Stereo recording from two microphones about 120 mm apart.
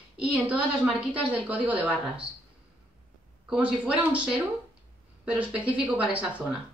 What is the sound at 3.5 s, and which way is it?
A woman's voice, 10° right (ahead or behind).